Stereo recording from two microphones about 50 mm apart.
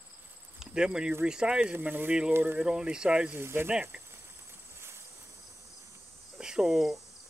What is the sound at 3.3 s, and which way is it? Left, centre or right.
Speech, right.